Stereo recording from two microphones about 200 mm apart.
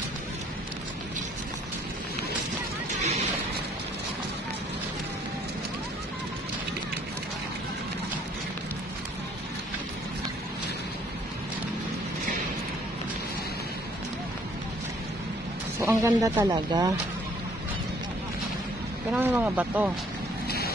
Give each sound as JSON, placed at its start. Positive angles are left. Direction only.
{"t": 3.0, "sound": "a sound", "side_deg": -35}
{"t": 15.8, "sound": "speech", "side_deg": -15}
{"t": 19.1, "sound": "speech", "side_deg": -10}
{"t": 20.4, "sound": "vehicle", "side_deg": 50}